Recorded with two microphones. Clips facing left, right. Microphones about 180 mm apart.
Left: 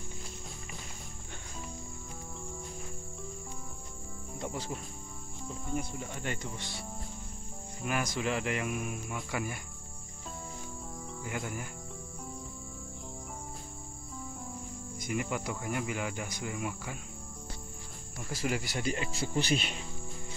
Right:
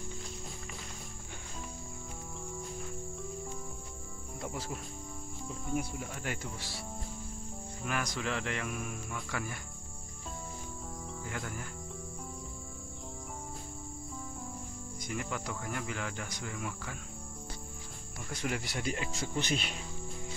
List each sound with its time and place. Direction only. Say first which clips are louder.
4.4 s speech: left 2 dB; centre (ahead or behind)
7.8 s speech: left 3 dB; 5° left (ahead or behind)
11.2 s speech: left 4 dB; 10° left (ahead or behind)
15.0 s speech: left 4 dB; 10° left (ahead or behind)
18.3 s speech: left 3 dB; 5° left (ahead or behind)
19.1 s speech: left 3 dB; 30° left (ahead or behind)